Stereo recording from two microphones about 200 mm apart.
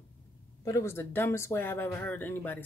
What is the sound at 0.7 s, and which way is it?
Speech, 15° left (ahead or behind).